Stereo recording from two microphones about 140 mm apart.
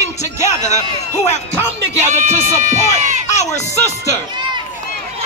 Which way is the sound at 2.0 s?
60° right (ahead or behind).